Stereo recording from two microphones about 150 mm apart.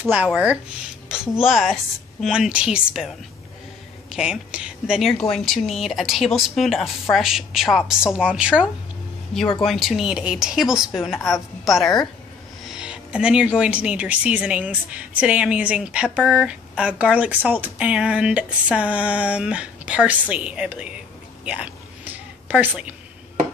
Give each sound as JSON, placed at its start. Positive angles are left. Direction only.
{"t": 0.1, "sound": "speech", "side_deg": -10}
{"t": 4.1, "sound": "speech", "side_deg": -5}
{"t": 11.1, "sound": "a woman's voice", "side_deg": 20}
{"t": 11.6, "sound": "a woman's voice", "side_deg": 0}
{"t": 21.5, "sound": "a sound", "side_deg": -10}